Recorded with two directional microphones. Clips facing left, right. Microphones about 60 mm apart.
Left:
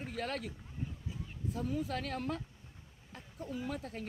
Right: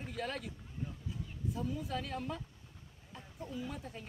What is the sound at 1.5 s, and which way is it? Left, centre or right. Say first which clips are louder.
Speech: left 3 dB; left.